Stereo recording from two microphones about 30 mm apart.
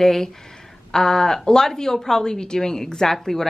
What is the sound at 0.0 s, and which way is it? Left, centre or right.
A woman's voice, centre.